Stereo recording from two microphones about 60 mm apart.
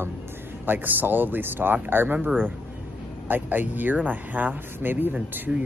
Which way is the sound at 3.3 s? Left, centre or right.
Right.